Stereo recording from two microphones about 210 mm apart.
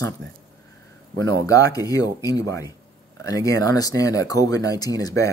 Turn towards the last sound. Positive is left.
turn(degrees=15)  # may be behind; listen again after turning